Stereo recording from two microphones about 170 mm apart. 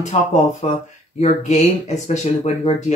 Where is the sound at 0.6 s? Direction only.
40° left (ahead or behind).